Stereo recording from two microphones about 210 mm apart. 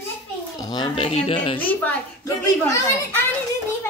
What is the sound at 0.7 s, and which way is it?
Speech, 25° left (ahead or behind).